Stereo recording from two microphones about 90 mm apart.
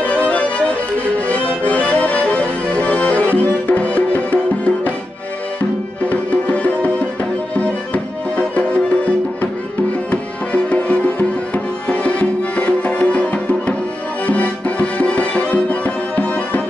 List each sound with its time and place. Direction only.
0.0 s music: 15° left (ahead or behind)
6.0 s music: 15° left (ahead or behind)
10.5 s music: 15° left (ahead or behind)